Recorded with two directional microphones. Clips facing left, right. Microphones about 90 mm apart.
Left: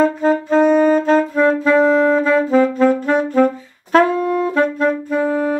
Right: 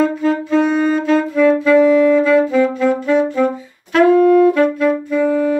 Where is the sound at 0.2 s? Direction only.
40° left (ahead or behind).